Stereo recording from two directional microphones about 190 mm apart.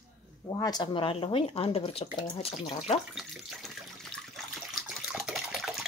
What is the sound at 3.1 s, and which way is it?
Water, centre (ahead or behind).